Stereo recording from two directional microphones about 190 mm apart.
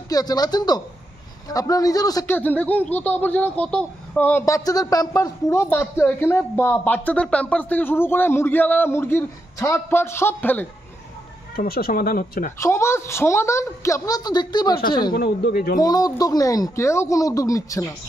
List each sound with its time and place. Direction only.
0.1 s speech: 20° left (ahead or behind)
11.5 s speech: 50° left (ahead or behind)
12.5 s speech: 15° left (ahead or behind)
15.1 s speech: 55° left (ahead or behind)
15.8 s speech: 20° left (ahead or behind)